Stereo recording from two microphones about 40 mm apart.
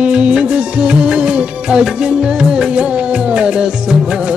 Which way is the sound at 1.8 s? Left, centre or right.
Centre.